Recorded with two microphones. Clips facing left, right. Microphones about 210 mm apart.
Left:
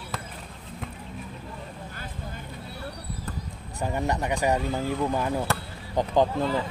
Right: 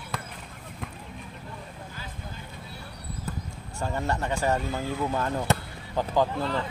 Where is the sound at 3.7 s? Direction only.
15° left (ahead or behind).